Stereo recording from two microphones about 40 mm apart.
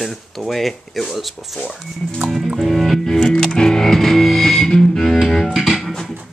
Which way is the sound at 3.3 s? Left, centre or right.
Centre.